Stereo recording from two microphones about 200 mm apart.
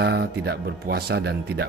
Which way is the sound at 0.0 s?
55° right (ahead or behind).